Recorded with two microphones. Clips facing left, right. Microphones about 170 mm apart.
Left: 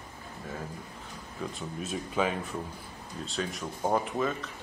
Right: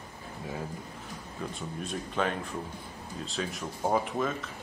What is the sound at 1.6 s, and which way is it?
Speech, 5° left (ahead or behind).